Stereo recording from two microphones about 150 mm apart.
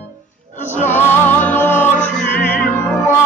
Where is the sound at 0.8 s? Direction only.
15° left (ahead or behind).